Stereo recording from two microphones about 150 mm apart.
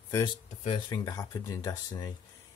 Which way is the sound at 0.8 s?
25° left (ahead or behind).